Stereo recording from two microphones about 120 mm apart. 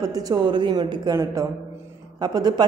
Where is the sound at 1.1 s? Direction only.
25° right (ahead or behind).